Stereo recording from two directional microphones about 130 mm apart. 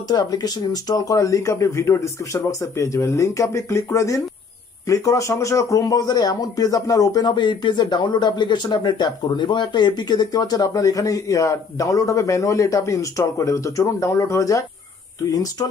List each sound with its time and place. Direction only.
0.1 s a man's voice: 30° left (ahead or behind)